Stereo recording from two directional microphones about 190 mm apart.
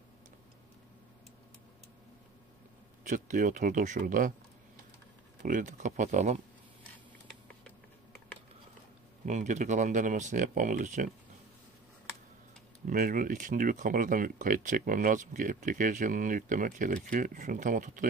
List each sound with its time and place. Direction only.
3.0 s speech: 45° right (ahead or behind)
5.4 s speech: 45° right (ahead or behind)
9.2 s speech: 40° right (ahead or behind)
12.8 s speech: 45° right (ahead or behind)